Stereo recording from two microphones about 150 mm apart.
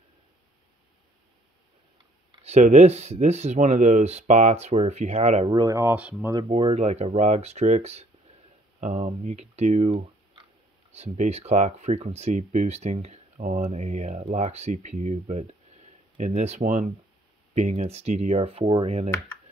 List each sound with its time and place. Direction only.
2.4 s speech: 50° right (ahead or behind)
5.5 s speech: 25° right (ahead or behind)
5.9 s speech: 10° right (ahead or behind)
6.5 s speech: 40° right (ahead or behind)